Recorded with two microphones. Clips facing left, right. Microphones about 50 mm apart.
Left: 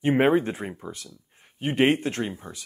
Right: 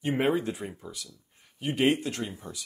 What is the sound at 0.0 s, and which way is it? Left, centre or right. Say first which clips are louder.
Speech: left 6 dB; left.